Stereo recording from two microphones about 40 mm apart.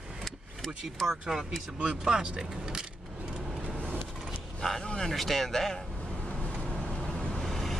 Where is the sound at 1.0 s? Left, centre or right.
Centre.